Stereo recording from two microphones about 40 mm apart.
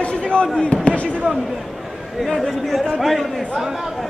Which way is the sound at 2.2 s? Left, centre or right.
Centre.